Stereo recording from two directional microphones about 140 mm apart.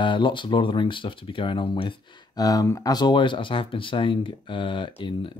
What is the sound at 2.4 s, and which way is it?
Speech, 25° left (ahead or behind).